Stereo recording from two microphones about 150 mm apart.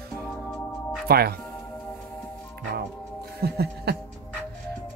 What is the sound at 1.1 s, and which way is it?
Speech, 90° right.